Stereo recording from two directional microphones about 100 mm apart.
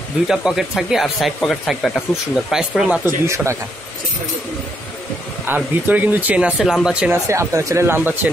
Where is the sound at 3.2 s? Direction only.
30° right (ahead or behind).